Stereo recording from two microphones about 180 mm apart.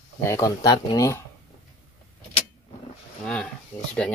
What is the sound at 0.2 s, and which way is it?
Speech, 15° left (ahead or behind).